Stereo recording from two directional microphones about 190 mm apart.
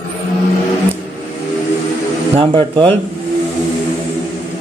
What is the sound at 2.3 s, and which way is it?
Speech, 30° right (ahead or behind).